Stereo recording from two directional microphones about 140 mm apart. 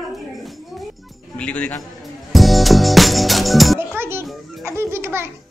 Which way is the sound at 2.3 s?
Centre (ahead or behind).